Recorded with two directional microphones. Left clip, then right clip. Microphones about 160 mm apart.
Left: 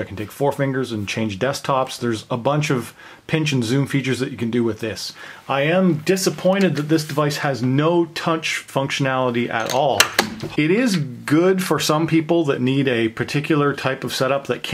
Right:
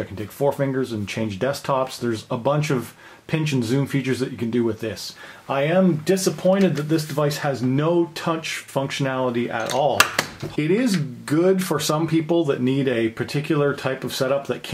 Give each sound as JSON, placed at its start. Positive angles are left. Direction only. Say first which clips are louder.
{"t": 0.4, "sound": "speech", "louder": "left 1 dB", "side_deg": 25}